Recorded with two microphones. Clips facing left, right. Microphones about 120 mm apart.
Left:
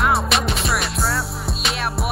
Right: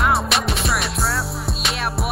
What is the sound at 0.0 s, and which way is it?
Music, centre (ahead or behind).